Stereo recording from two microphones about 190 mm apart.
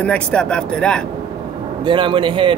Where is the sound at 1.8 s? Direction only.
25° right (ahead or behind).